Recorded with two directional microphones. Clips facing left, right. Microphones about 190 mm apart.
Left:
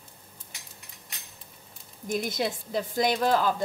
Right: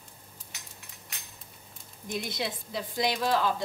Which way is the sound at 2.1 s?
45° left (ahead or behind).